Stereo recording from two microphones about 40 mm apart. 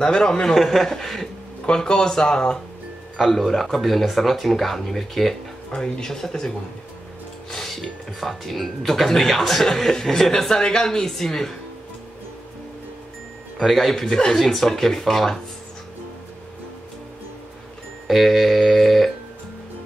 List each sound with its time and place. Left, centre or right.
0.0 s speech: centre
0.6 s speech: centre
1.7 s speech: left
3.2 s speech: centre
5.7 s speech: centre
7.5 s speech: centre
13.6 s speech: centre
14.0 s speech: centre
14.4 s speech: centre
18.0 s speech: centre